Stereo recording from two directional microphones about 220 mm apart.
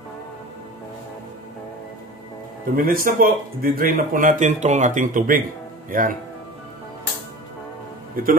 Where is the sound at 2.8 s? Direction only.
40° right (ahead or behind).